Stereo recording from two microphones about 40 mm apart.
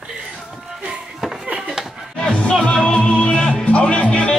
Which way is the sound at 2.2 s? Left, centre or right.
Left.